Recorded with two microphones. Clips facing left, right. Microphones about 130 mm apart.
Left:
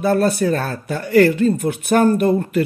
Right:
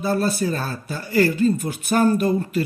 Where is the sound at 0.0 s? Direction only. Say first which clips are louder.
Left 5 dB; 60° left (ahead or behind).